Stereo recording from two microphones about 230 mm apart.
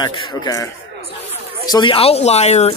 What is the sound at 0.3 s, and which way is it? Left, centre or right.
Speech, centre.